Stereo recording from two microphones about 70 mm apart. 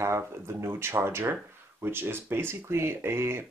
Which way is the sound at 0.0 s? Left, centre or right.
Right.